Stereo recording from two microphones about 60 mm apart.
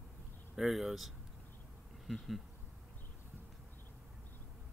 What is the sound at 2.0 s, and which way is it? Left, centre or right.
Bee, centre.